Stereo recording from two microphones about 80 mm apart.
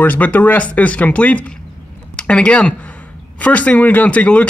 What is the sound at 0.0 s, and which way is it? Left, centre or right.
Speech, left.